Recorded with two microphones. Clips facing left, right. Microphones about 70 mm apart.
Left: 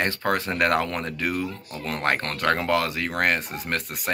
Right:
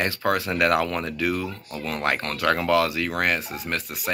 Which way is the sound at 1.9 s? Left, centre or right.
Left.